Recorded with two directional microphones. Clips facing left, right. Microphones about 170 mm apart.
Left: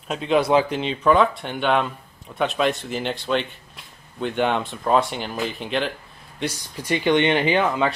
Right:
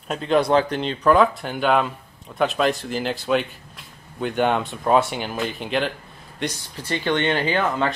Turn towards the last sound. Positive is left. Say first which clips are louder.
# left 2 dB
turn(degrees=20)  # may be behind; listen again after turning